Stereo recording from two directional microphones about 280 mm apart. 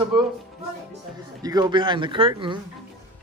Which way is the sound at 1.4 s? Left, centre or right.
Centre.